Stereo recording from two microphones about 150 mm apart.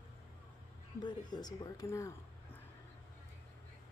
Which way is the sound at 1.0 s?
30° left (ahead or behind).